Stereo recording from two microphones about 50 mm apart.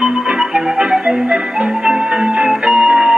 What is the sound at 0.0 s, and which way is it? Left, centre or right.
Marimba, centre.